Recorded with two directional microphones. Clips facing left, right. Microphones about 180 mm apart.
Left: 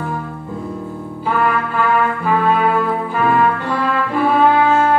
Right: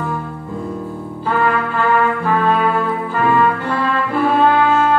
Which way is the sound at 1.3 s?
10° left (ahead or behind).